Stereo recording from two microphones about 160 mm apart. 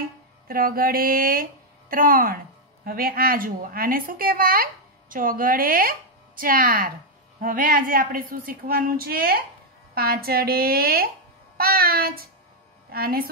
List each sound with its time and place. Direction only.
0.5 s a woman's voice: 65° right (ahead or behind)